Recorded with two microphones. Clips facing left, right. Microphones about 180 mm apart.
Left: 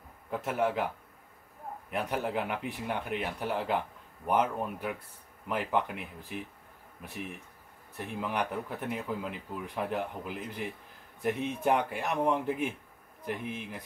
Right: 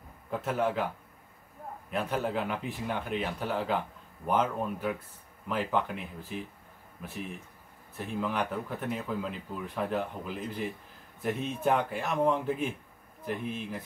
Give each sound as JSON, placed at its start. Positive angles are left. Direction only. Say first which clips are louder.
{"t": 0.3, "sound": "speech", "louder": "even", "side_deg": 10}
{"t": 1.9, "sound": "speech", "louder": "right 1 dB", "side_deg": 15}
{"t": 8.0, "sound": "speech", "louder": "right 1 dB", "side_deg": 15}